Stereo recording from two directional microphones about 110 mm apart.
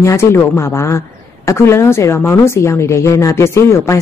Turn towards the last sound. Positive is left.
turn(degrees=25)  # may be behind; listen again after turning